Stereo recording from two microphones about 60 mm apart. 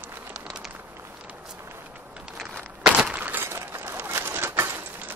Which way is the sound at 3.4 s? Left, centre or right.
Right.